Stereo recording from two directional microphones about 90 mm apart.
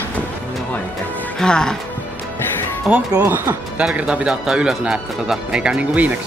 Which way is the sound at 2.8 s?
15° right (ahead or behind).